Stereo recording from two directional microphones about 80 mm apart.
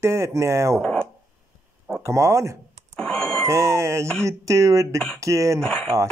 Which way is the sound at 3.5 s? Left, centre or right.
Right.